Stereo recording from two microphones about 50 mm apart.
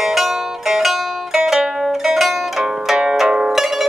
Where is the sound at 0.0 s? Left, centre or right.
Centre.